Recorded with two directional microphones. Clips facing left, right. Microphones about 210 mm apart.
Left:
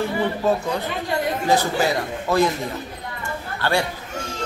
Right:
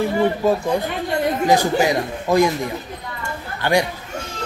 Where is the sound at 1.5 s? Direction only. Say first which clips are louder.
Right 2 dB; 15° right (ahead or behind).